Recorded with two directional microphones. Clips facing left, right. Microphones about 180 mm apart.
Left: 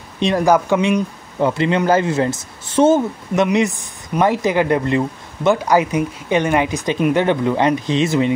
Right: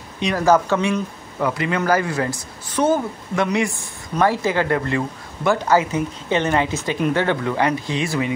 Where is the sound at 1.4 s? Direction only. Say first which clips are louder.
Left 5 dB; 25° left (ahead or behind).